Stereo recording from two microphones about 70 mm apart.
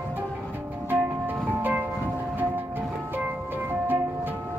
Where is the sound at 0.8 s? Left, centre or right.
Right.